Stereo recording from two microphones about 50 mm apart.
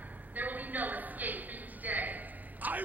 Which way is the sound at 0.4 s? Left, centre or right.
Right.